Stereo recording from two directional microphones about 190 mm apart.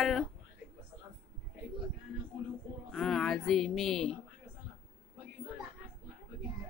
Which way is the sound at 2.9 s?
5° left (ahead or behind).